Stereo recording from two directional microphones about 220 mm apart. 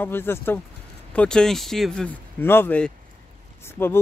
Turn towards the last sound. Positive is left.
turn(degrees=10)  # may be behind; listen again after turning